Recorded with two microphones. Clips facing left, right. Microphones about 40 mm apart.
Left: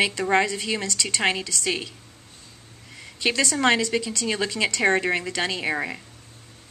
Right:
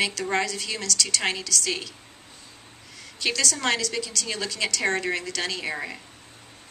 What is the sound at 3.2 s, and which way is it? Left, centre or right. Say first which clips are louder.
A woman's voice: left 4 dB; left.